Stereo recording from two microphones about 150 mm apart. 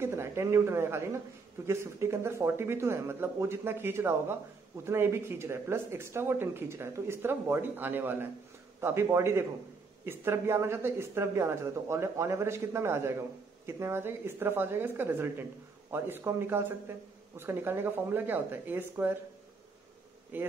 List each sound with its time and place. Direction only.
0.0 s speech: 15° right (ahead or behind)
20.3 s speech: 15° right (ahead or behind)